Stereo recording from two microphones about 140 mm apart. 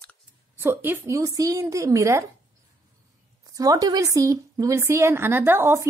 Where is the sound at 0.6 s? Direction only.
15° right (ahead or behind).